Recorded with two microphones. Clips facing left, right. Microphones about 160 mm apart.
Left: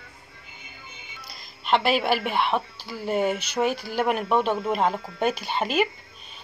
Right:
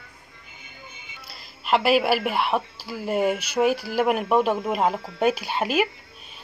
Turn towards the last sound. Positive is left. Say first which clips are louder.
# right 1 dB
turn(degrees=-5)  # may be behind; listen again after turning